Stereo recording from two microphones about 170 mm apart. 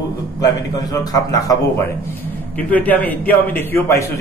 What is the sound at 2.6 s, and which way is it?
A man's voice, 10° left (ahead or behind).